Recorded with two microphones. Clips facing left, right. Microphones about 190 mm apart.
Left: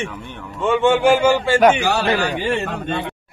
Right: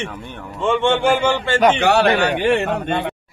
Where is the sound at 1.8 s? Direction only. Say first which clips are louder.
Right 4 dB; 65° right (ahead or behind).